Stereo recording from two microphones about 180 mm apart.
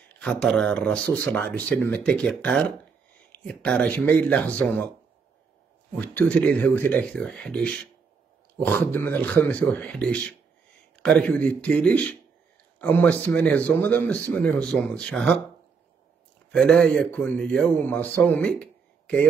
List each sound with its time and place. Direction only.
0.2 s a man's voice: 5° left (ahead or behind)
5.9 s a man's voice: 10° left (ahead or behind)
16.5 s a man's voice: 5° left (ahead or behind)